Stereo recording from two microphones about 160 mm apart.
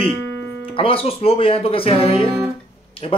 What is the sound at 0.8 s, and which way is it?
Speech, 35° left (ahead or behind).